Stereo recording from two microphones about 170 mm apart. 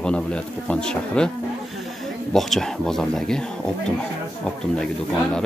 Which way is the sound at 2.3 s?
Centre (ahead or behind).